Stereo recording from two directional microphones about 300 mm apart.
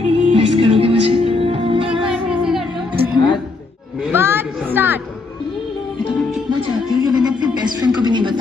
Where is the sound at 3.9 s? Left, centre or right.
Centre.